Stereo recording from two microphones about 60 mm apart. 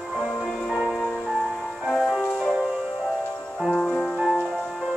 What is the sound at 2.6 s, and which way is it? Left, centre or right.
Music, centre.